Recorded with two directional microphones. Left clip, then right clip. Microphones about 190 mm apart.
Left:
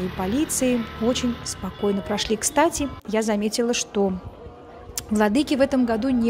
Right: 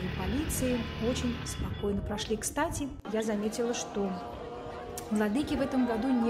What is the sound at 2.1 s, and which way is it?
Speech, 45° left (ahead or behind).